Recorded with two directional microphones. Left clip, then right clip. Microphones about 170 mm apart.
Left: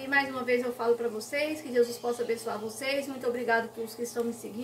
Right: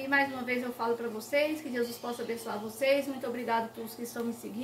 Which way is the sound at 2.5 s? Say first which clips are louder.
Left 3 dB; 15° right (ahead or behind).